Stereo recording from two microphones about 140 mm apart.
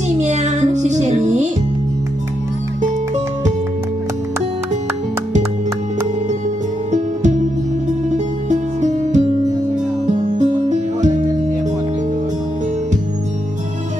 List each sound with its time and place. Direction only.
0.2 s music: 55° right (ahead or behind)
8.1 s music: 60° right (ahead or behind)
10.2 s music: 60° right (ahead or behind)